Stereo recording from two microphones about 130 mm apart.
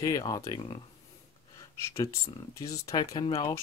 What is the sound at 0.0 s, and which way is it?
Speech, 30° left (ahead or behind).